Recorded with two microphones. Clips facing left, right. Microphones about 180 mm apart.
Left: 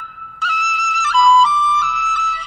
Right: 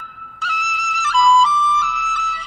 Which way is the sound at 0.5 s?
65° left (ahead or behind).